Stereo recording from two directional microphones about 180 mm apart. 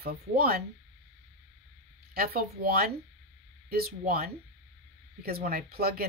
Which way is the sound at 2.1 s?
55° right (ahead or behind).